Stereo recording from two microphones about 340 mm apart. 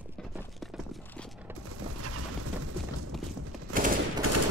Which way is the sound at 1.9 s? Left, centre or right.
Right.